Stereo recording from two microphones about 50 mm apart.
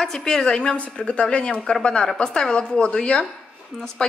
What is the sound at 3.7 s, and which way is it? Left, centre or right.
Speech, centre.